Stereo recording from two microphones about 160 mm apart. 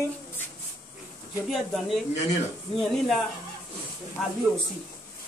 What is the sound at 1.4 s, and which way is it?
A man's voice, centre (ahead or behind).